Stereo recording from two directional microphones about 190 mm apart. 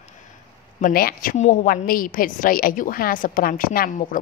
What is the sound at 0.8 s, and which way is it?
A woman's voice, 50° left (ahead or behind).